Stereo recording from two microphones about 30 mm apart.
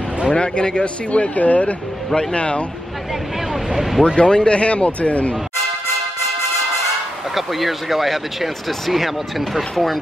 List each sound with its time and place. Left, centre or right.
0.3 s speech: left
2.3 s speech: left
3.7 s vehicle: centre
4.2 s speech: left
7.3 s speech: centre